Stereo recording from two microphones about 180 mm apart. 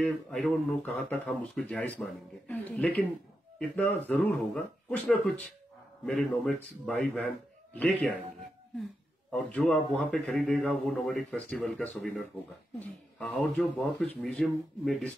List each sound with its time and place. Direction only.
0.0 s speech: 5° left (ahead or behind)
9.3 s speech: 5° left (ahead or behind)